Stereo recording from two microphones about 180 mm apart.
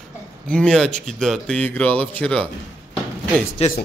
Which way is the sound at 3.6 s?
35° left (ahead or behind).